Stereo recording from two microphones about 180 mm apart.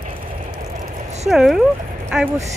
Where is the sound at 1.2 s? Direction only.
Centre (ahead or behind).